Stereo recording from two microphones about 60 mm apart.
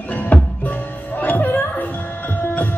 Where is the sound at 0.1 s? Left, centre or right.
Left.